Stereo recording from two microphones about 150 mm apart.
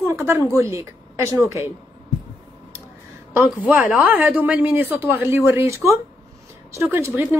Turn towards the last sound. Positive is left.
turn(degrees=-15)  # may be behind; listen again after turning